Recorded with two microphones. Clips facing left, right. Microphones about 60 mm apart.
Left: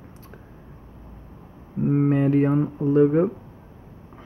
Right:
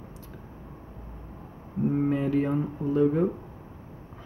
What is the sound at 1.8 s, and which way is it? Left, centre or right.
Speech, left.